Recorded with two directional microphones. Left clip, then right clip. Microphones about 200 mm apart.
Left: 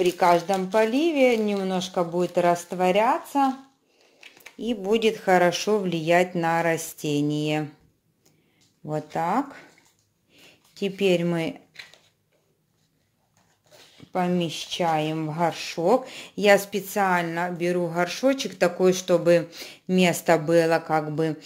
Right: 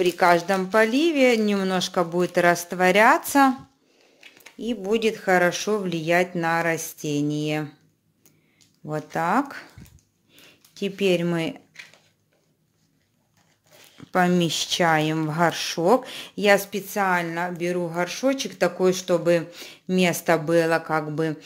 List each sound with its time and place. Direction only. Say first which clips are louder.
0.0 s speech: right 1 dB; 10° right (ahead or behind)
4.2 s speech: even; centre (ahead or behind)
8.8 s speech: right 1 dB; 5° right (ahead or behind)
10.3 s a sound: right 1 dB; centre (ahead or behind)
14.4 s speech: right 4 dB; 15° right (ahead or behind); by 21.4 s centre (ahead or behind)